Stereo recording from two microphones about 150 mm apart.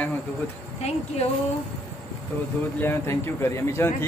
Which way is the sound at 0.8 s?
45° left (ahead or behind).